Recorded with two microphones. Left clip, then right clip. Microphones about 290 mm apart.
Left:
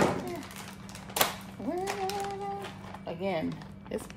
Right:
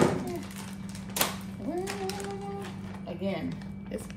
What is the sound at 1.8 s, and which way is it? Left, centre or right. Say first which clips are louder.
Child singing: left 3 dB; centre.